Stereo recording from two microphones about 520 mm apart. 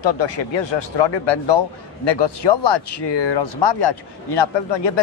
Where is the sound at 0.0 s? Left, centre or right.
Left.